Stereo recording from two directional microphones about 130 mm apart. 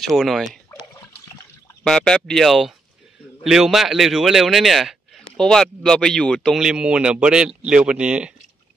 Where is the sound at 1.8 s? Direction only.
5° left (ahead or behind).